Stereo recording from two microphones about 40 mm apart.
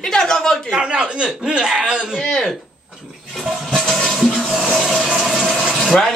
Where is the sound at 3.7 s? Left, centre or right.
Centre.